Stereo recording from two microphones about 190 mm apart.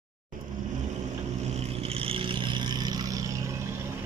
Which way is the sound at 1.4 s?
35° right (ahead or behind).